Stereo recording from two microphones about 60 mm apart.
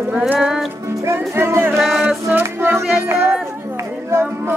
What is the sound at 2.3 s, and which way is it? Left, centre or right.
Music, right.